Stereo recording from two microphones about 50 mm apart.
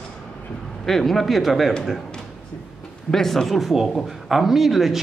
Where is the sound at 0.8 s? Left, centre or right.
Centre.